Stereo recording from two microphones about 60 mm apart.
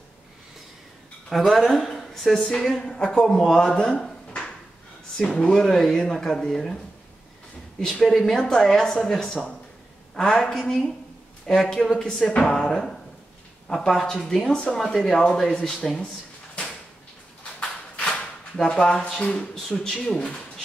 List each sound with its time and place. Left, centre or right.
1.5 s a woman's voice: centre
7.8 s a woman's voice: centre
17.4 s a sound: left
18.6 s a woman's voice: centre